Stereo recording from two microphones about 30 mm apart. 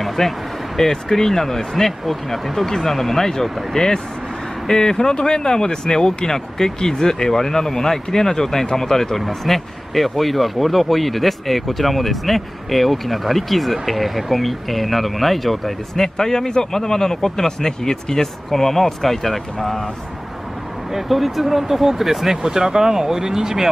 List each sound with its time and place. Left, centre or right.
0.0 s a sound: centre
0.7 s speech: centre
16.2 s speech: centre
20.9 s speech: centre